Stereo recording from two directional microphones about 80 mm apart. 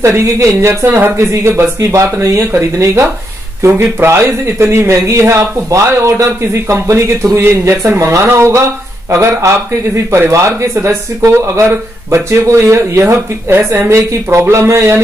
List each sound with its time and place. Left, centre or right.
0.0 s speech: right
7.3 s speech: right